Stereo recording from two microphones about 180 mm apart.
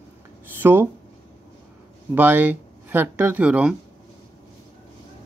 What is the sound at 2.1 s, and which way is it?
Speech, 10° right (ahead or behind).